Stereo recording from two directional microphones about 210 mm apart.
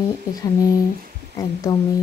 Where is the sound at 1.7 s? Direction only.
15° left (ahead or behind).